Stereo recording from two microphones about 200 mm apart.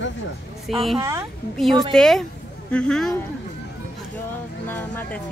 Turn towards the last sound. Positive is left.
turn(degrees=10)  # may be behind; listen again after turning